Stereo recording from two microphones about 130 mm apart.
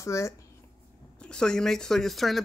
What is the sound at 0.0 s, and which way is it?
Speech, 20° left (ahead or behind).